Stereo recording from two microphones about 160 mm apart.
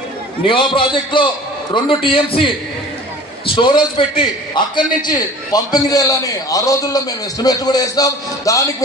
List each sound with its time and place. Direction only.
0.5 s a man's voice: 30° left (ahead or behind)